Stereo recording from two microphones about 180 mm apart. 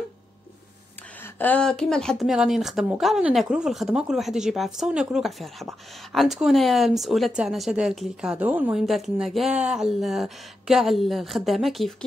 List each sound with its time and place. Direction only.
1.2 s speech: 10° left (ahead or behind)